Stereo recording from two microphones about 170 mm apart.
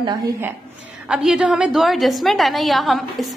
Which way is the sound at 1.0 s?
5° right (ahead or behind).